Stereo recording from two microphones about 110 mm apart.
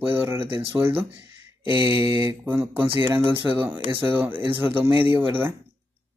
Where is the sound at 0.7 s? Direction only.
20° right (ahead or behind).